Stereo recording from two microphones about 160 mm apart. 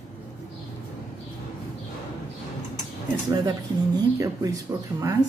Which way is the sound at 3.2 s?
25° right (ahead or behind).